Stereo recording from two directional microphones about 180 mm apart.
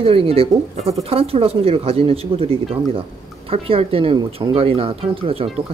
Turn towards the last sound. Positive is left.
turn(degrees=-30)  # may be behind; listen again after turning